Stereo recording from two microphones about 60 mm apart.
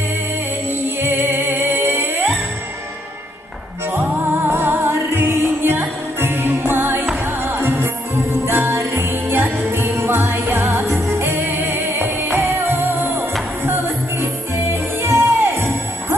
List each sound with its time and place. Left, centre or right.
0.7 s music: right
3.9 s music: right
8.5 s jingle bell: right
13.7 s music: right